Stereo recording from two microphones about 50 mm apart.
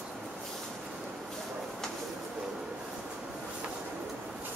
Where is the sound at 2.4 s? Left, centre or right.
Centre.